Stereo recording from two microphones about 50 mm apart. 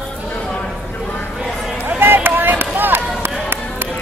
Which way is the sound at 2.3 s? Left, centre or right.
Right.